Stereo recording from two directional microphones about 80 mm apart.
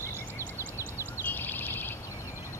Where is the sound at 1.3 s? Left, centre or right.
Left.